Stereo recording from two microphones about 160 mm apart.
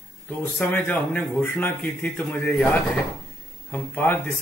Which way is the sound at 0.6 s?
10° left (ahead or behind).